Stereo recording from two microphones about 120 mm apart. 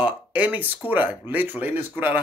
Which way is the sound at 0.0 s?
10° right (ahead or behind).